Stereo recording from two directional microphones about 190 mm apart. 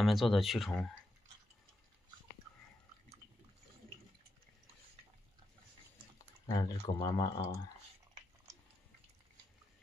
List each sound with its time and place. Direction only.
0.0 s speech: centre (ahead or behind)
6.4 s speech: 25° left (ahead or behind)